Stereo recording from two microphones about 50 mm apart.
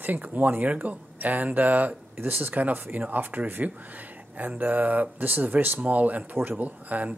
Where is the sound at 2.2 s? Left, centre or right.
Right.